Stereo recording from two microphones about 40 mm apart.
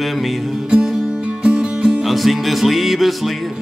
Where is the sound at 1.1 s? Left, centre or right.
Right.